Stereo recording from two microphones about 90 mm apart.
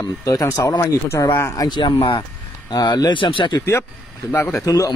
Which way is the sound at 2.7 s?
45° left (ahead or behind).